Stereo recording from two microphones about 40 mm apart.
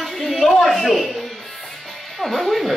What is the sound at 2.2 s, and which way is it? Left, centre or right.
Speech, centre.